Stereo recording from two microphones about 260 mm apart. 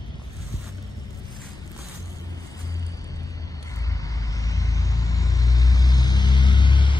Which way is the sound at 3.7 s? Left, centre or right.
Centre.